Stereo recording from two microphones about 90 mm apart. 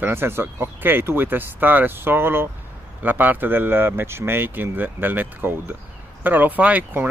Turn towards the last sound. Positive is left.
turn(degrees=-15)  # may be behind; listen again after turning